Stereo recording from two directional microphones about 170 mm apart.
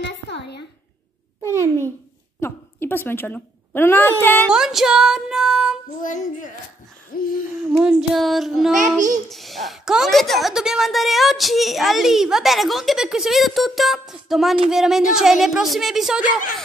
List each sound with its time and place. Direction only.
0.0 s a sound: 80° left
1.4 s a child's voice: 15° right (ahead or behind)
2.4 s a woman's voice: 15° left (ahead or behind)
4.5 s a woman's voice: 5° right (ahead or behind)
6.0 s speech: 50° left (ahead or behind)
7.7 s a woman's voice: 5° right (ahead or behind)
8.7 s a child's voice: 45° right (ahead or behind)
9.3 s a woman's voice: centre (ahead or behind)